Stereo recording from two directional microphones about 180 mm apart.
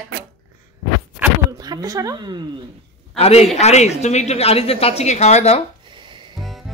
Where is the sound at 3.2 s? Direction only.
35° left (ahead or behind).